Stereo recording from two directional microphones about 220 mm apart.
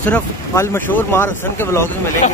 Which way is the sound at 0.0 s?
10° left (ahead or behind).